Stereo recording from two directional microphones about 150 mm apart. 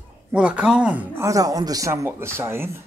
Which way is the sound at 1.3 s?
25° right (ahead or behind).